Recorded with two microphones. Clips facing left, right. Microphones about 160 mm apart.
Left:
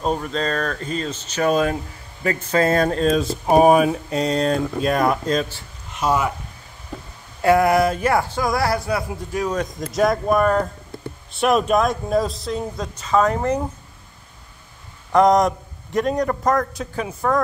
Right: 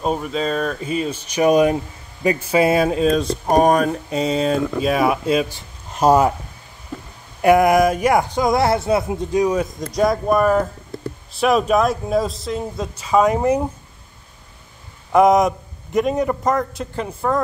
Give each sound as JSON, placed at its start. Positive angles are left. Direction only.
{"t": 0.0, "sound": "speech", "side_deg": -5}
{"t": 5.9, "sound": "speech", "side_deg": -40}
{"t": 7.4, "sound": "speech", "side_deg": -15}
{"t": 9.8, "sound": "speech", "side_deg": 0}
{"t": 15.1, "sound": "speech", "side_deg": -5}